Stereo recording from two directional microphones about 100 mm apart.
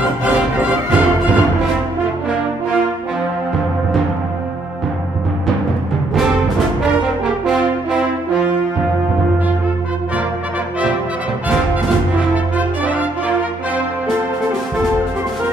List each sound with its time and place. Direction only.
0.2 s music: 15° right (ahead or behind)
7.4 s brass instrument: centre (ahead or behind)
12.5 s brass instrument: 15° right (ahead or behind)